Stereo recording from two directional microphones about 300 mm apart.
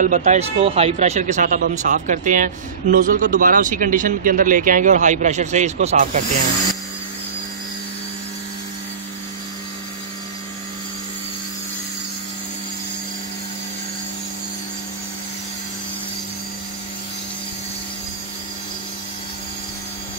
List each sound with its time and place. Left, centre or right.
0.0 s speech: right